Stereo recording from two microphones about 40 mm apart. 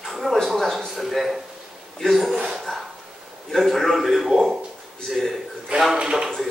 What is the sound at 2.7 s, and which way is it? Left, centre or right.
Speech, centre.